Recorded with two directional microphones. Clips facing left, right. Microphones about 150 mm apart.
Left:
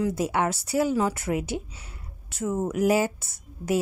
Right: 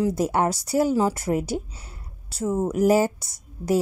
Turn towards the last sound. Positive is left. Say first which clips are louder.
# right 3 dB
turn(degrees=-40)  # may be behind; listen again after turning